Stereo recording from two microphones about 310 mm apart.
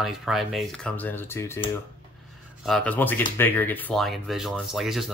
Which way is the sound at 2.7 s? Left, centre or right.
Centre.